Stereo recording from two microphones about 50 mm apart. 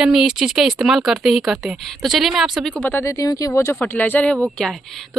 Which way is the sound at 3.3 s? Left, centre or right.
Left.